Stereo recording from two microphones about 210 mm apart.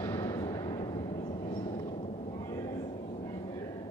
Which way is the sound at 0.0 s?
15° left (ahead or behind).